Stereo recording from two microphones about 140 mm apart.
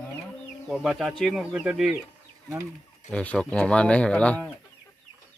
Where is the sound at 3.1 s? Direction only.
10° left (ahead or behind).